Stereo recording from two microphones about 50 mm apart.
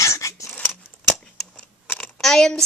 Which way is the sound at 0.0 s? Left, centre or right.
Left.